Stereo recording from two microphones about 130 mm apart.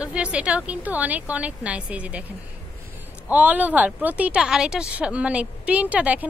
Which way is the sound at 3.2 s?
10° right (ahead or behind).